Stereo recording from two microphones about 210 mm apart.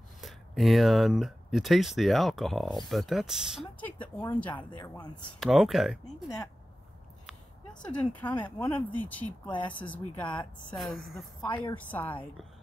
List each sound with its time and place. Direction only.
0.2 s speech: centre (ahead or behind)
3.8 s speech: 10° left (ahead or behind)
4.7 s speech: 20° left (ahead or behind)
5.4 s speech: centre (ahead or behind)
7.9 s speech: 5° left (ahead or behind)